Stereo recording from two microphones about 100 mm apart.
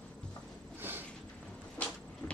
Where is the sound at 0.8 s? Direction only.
20° right (ahead or behind).